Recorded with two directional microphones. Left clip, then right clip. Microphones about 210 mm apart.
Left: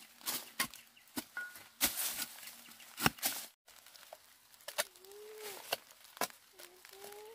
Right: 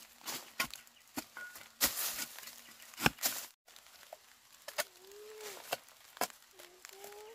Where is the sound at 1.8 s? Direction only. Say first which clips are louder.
Right 1 dB; 20° right (ahead or behind).